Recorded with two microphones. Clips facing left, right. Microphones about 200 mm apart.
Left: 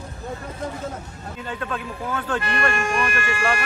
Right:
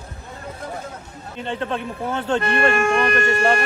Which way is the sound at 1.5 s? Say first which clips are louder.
Right 4 dB; 25° right (ahead or behind).